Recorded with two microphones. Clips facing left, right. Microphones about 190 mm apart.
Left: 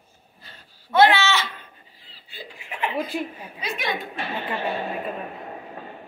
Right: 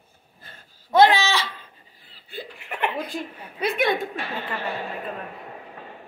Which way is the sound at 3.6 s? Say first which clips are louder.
Right 6 dB; 55° right (ahead or behind).